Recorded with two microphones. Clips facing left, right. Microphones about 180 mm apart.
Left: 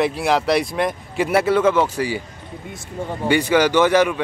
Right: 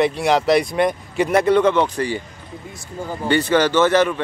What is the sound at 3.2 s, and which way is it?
Speech, 10° left (ahead or behind).